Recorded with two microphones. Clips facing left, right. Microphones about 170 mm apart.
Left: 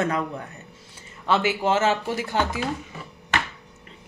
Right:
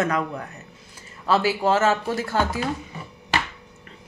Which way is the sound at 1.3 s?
20° left (ahead or behind).